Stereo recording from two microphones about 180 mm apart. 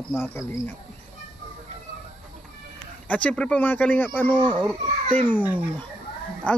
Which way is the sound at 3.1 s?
5° left (ahead or behind).